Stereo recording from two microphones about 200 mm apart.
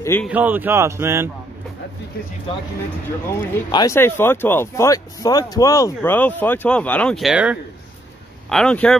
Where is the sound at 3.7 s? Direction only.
20° left (ahead or behind).